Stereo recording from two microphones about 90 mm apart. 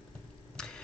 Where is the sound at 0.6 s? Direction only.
5° left (ahead or behind).